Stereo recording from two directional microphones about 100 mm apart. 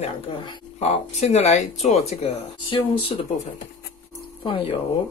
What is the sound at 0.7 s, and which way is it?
Speech, 90° left.